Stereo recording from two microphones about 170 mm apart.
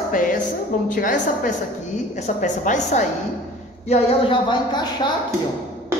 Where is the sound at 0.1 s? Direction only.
50° left (ahead or behind).